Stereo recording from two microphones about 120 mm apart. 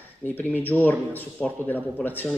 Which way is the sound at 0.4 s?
15° left (ahead or behind).